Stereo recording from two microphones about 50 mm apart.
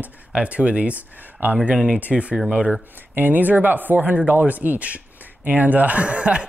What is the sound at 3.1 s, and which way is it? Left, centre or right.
Speech, right.